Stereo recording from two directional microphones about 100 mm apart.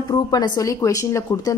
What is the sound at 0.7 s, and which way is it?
Speech, 35° left (ahead or behind).